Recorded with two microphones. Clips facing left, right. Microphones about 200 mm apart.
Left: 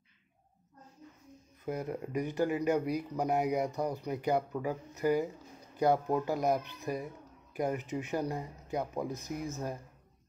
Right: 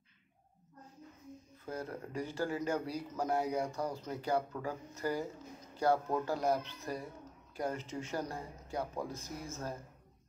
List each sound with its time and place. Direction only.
1.7 s speech: 15° left (ahead or behind)